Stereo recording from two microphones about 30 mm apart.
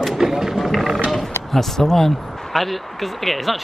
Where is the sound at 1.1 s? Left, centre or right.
Centre.